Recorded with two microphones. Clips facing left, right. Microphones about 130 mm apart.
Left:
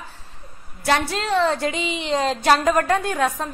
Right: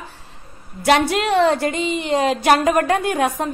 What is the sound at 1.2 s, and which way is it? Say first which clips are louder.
Speech: right 4 dB; 65° right (ahead or behind).